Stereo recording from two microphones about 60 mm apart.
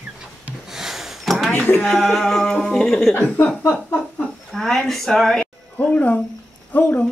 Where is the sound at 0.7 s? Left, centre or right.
Centre.